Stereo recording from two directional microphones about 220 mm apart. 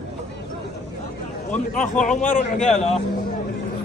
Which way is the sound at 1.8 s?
35° left (ahead or behind).